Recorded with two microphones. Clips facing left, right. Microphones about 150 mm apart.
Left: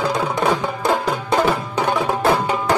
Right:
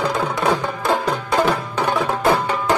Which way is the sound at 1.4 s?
10° left (ahead or behind).